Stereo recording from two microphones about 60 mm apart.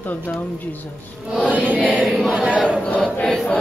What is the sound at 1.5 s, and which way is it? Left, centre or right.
Music, right.